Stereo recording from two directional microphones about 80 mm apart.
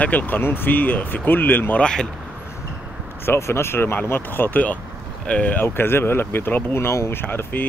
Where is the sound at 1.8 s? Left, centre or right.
Centre.